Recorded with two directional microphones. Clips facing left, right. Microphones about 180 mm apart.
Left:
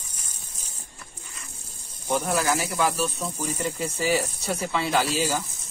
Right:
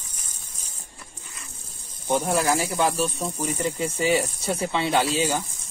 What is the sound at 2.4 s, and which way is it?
Speech, 30° right (ahead or behind).